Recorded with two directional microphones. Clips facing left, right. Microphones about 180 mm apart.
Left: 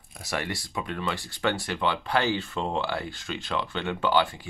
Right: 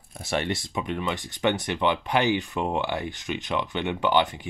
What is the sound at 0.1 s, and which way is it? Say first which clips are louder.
Speech: right 4 dB; 25° right (ahead or behind).